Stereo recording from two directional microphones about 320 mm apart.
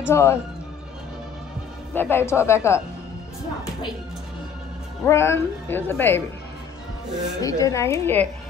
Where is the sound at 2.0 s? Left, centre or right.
Centre.